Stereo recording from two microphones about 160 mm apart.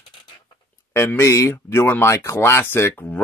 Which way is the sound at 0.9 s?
15° left (ahead or behind).